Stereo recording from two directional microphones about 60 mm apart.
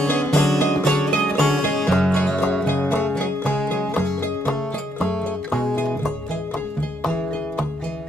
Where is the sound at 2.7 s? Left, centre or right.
Left.